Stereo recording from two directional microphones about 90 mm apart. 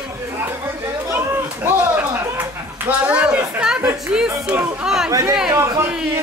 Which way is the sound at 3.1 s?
10° right (ahead or behind).